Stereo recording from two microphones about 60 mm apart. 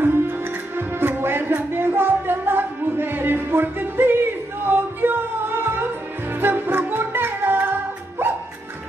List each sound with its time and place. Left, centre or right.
0.0 s music: right